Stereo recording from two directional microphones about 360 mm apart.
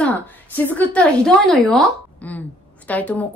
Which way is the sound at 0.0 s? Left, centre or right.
Centre.